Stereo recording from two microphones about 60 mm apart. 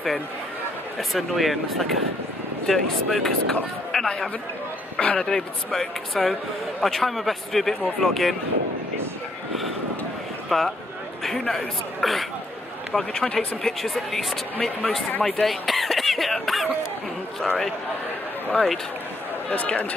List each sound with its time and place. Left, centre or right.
1.1 s a man's voice: centre
10.5 s a man's voice: centre
19.5 s speech: left